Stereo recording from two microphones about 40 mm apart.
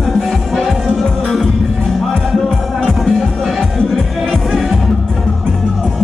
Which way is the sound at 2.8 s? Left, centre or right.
Centre.